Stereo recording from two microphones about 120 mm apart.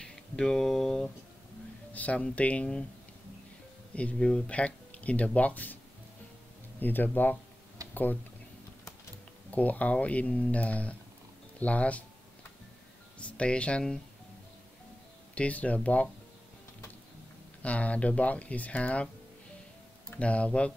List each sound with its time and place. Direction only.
0.0 s speech: 5° left (ahead or behind)
3.9 s speech: 10° left (ahead or behind)
6.8 s speech: 15° left (ahead or behind)
9.5 s speech: 10° left (ahead or behind)
13.2 s speech: 10° left (ahead or behind)
15.3 s speech: 10° left (ahead or behind)
17.6 s speech: 10° left (ahead or behind)
20.1 s speech: 10° left (ahead or behind)